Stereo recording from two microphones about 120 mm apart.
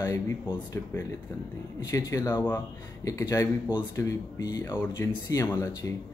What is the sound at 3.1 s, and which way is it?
Speech, 25° left (ahead or behind).